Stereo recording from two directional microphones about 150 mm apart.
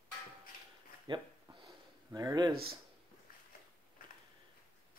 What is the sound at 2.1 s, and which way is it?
Speech, 20° right (ahead or behind).